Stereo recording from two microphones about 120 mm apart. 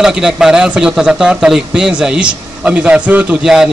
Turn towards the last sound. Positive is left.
turn(degrees=-5)  # may be behind; listen again after turning